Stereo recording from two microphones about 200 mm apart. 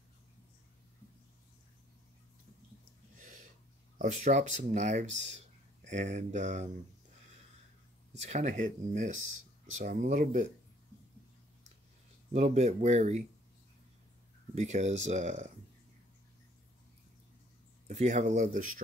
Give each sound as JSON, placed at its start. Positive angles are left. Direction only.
{"t": 3.2, "sound": "a sound", "side_deg": -40}
{"t": 4.0, "sound": "speech", "side_deg": -35}
{"t": 8.1, "sound": "speech", "side_deg": -35}
{"t": 12.3, "sound": "speech", "side_deg": -35}
{"t": 14.5, "sound": "speech", "side_deg": -35}
{"t": 17.8, "sound": "speech", "side_deg": -35}